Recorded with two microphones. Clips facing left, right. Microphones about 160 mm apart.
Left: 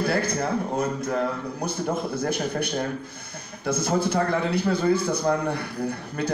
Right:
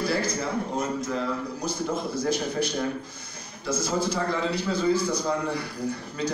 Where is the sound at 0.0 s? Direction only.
55° left (ahead or behind).